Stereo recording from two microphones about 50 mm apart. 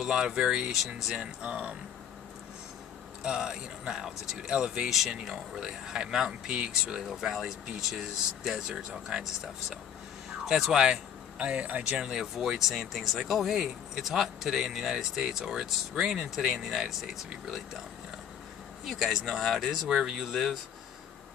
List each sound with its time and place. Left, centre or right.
0.0 s speech: centre
1.2 s speech: right
3.3 s speech: centre
12.0 s speech: centre
18.9 s speech: centre